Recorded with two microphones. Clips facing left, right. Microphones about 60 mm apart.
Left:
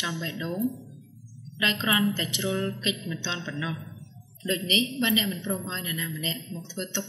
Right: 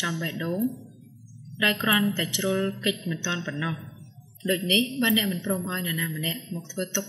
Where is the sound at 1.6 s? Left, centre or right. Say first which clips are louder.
Right 1 dB; centre.